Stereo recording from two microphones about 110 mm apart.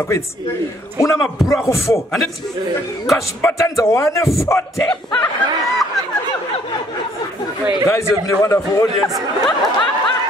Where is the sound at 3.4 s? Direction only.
25° left (ahead or behind).